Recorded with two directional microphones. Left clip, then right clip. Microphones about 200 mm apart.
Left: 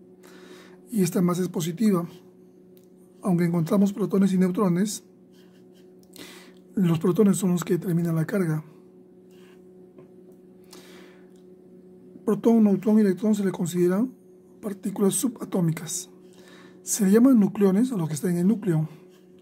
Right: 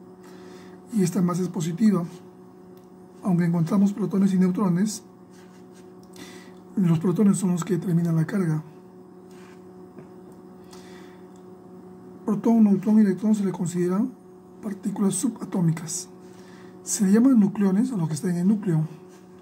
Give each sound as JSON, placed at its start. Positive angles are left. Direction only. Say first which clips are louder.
{"t": 0.9, "sound": "speech", "louder": "left 1 dB", "side_deg": 45}
{"t": 3.2, "sound": "speech", "louder": "left 1 dB", "side_deg": 45}
{"t": 6.8, "sound": "speech", "louder": "left 2 dB", "side_deg": 50}
{"t": 12.3, "sound": "speech", "louder": "left 1 dB", "side_deg": 45}